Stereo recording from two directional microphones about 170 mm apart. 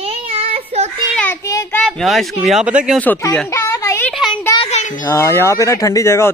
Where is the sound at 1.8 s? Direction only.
Centre (ahead or behind).